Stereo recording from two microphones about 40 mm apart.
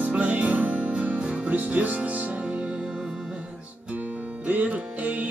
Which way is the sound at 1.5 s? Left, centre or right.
Right.